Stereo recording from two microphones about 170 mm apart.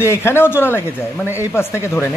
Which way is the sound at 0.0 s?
15° left (ahead or behind).